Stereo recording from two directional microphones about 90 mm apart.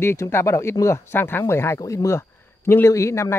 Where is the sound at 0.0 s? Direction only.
30° left (ahead or behind).